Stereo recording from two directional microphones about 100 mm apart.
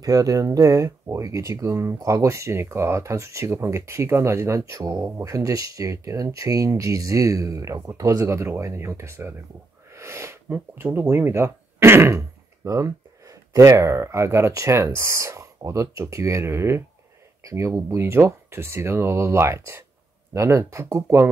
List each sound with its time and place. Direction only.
0.0 s speech: 35° right (ahead or behind)